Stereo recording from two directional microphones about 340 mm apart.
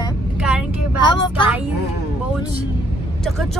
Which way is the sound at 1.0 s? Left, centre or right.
Centre.